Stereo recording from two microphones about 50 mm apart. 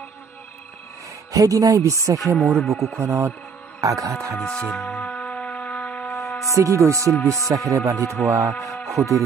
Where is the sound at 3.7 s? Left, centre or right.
Right.